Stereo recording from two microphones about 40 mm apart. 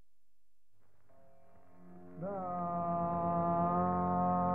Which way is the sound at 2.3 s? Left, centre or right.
Right.